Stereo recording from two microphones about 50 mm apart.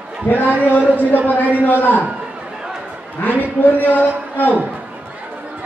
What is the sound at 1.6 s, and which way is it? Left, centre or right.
Speech, left.